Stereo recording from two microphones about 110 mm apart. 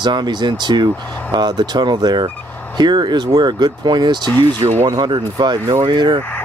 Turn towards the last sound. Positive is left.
turn(degrees=-45)  # may be behind; listen again after turning